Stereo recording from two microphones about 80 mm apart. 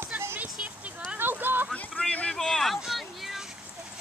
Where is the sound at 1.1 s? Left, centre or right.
Right.